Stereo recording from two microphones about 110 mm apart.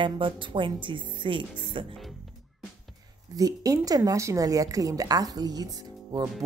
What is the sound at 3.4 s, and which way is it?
A woman's voice, 35° right (ahead or behind).